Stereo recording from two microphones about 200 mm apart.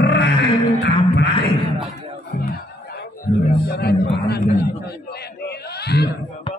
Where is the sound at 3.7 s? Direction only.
55° left (ahead or behind).